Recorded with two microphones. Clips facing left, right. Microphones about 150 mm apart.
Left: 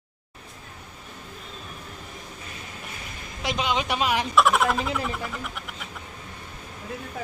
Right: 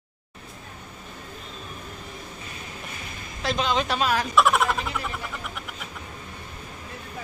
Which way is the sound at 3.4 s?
10° left (ahead or behind).